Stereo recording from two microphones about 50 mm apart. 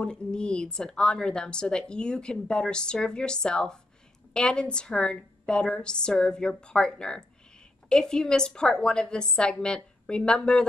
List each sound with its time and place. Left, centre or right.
0.0 s a woman's voice: centre